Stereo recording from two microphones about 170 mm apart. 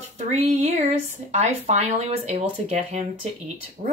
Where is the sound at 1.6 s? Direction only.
40° right (ahead or behind).